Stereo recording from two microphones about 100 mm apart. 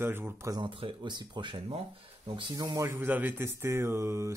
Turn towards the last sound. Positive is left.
turn(degrees=-25)  # may be behind; listen again after turning